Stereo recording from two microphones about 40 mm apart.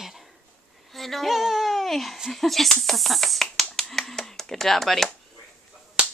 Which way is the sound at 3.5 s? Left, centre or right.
Centre.